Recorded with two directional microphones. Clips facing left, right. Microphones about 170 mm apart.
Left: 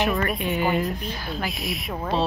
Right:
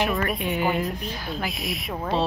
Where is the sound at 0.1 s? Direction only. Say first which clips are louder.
Left 1 dB; centre (ahead or behind).